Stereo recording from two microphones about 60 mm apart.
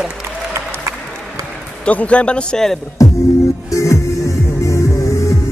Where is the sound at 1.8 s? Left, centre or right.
Left.